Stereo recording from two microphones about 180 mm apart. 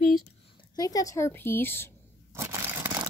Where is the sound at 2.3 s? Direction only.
15° right (ahead or behind).